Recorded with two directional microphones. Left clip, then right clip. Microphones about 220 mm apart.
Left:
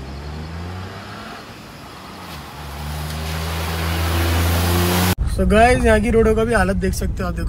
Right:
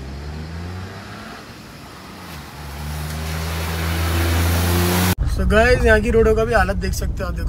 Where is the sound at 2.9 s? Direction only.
Centre (ahead or behind).